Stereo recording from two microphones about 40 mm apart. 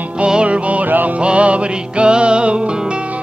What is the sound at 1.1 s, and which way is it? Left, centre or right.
Music, right.